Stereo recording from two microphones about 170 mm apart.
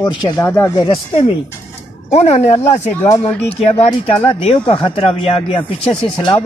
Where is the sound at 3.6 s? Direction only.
35° left (ahead or behind).